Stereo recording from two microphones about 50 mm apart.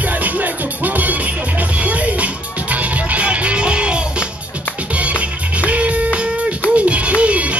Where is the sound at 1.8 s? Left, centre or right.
Right.